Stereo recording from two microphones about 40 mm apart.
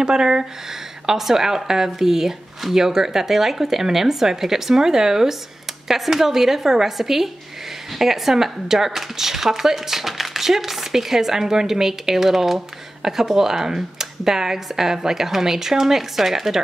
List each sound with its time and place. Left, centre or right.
0.0 s speech: centre